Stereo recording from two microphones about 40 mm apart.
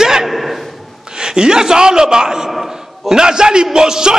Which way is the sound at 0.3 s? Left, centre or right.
Centre.